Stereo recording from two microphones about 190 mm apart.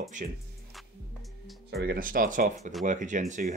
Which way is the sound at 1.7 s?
55° right (ahead or behind).